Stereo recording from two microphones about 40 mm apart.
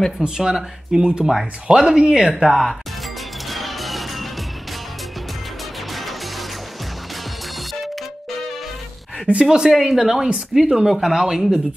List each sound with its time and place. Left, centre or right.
0.4 s speech: centre
2.3 s speech: centre
3.4 s music: centre
5.9 s music: centre
9.3 s speech: right
9.7 s speech: centre